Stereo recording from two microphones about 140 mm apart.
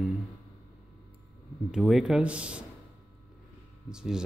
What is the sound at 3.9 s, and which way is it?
Speech, 5° right (ahead or behind).